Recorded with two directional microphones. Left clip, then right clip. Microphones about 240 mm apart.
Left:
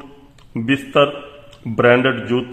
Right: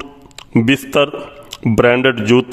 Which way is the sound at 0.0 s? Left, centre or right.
Right.